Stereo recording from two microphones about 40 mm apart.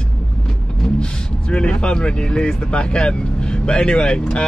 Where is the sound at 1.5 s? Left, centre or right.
Left.